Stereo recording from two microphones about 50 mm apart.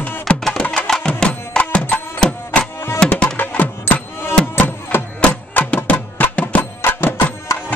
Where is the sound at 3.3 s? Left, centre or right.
Left.